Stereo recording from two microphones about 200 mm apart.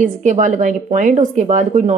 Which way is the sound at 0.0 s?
40° right (ahead or behind).